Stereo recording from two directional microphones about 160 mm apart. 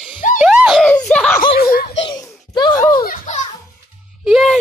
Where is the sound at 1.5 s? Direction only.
80° left.